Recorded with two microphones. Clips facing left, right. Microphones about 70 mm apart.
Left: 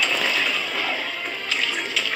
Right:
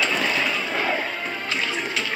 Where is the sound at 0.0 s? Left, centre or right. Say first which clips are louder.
Right 1 dB; right.